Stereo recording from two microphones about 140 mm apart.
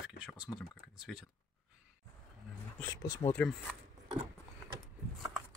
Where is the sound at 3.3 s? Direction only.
10° left (ahead or behind).